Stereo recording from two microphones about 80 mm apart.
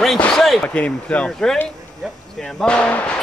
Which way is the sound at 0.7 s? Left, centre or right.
Centre.